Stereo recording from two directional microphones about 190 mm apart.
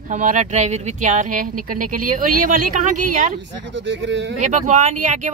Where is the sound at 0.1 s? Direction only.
40° right (ahead or behind).